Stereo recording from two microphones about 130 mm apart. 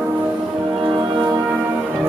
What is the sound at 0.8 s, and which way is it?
Music, 40° right (ahead or behind).